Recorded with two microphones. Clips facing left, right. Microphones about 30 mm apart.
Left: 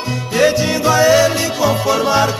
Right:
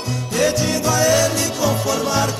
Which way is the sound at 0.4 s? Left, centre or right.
Left.